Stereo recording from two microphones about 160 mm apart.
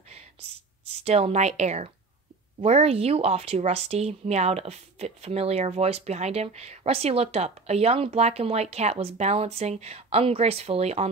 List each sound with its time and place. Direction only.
1.0 s speech: 40° right (ahead or behind)